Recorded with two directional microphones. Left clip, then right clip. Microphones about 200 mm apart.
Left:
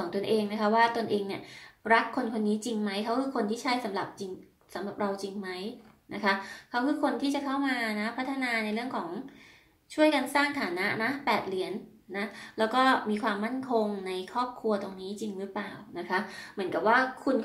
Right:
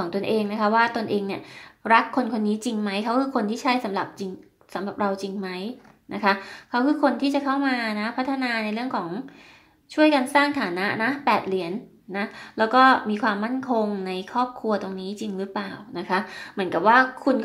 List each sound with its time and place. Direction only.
0.1 s a woman's voice: 40° right (ahead or behind)